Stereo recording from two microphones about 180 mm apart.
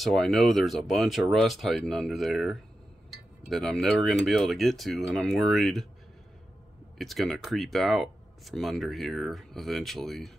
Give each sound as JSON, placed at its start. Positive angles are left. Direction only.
{"t": 0.0, "sound": "speech", "side_deg": 0}
{"t": 7.0, "sound": "speech", "side_deg": 0}